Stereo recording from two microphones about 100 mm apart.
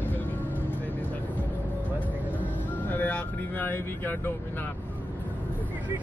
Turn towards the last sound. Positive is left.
turn(degrees=20)  # may be behind; listen again after turning